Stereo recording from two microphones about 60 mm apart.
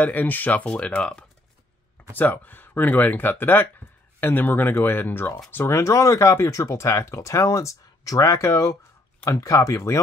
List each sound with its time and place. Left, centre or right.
0.0 s speech: left
0.7 s speech: centre
2.1 s speech: left
5.7 s speech: left